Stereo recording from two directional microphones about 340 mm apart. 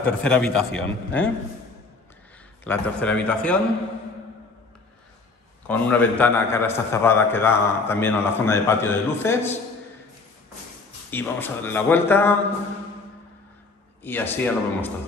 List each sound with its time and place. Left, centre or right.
0.0 s a man's voice: centre
2.6 s a man's voice: centre
5.7 s a man's voice: centre
11.1 s a man's voice: centre
14.0 s a man's voice: centre